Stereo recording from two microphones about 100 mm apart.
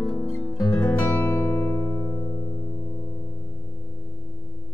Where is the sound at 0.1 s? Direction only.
25° left (ahead or behind).